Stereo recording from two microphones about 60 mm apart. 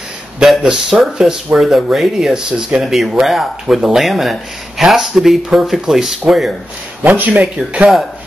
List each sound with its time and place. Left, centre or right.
0.6 s speech: centre
2.9 s speech: centre
7.0 s speech: right
7.5 s speech: centre